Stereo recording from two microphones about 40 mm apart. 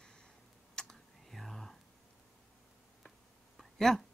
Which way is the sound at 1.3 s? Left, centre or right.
Centre.